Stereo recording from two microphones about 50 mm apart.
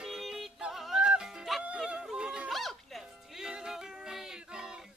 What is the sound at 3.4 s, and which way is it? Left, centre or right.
Music, centre.